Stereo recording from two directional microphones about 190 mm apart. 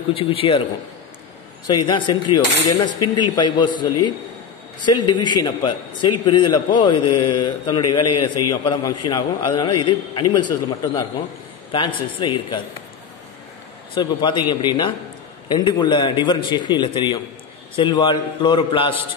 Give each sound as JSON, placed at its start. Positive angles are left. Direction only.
{"t": 0.1, "sound": "a man's voice", "side_deg": 30}
{"t": 1.7, "sound": "a man's voice", "side_deg": 25}
{"t": 12.2, "sound": "a man's voice", "side_deg": 25}
{"t": 13.9, "sound": "a man's voice", "side_deg": 25}